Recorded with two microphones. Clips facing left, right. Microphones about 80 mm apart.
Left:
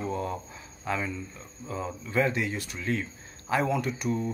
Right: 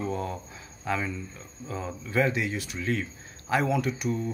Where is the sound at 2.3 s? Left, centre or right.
Left.